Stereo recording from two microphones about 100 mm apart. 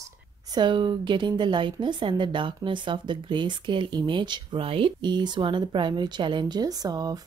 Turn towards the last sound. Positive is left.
turn(degrees=-40)  # may be behind; listen again after turning